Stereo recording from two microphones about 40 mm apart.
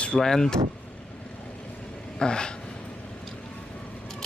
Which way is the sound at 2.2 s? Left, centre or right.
Left.